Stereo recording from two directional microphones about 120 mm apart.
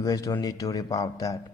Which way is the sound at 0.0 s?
30° left (ahead or behind).